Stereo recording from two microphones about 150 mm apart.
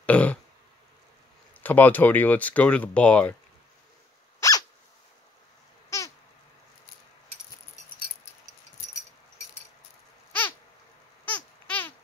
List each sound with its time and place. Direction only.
0.0 s throat clearing: 10° left (ahead or behind)
1.6 s speech: 10° left (ahead or behind)
4.4 s dog: 25° left (ahead or behind)
5.9 s babbling: 20° left (ahead or behind)
11.2 s a sound: 10° left (ahead or behind)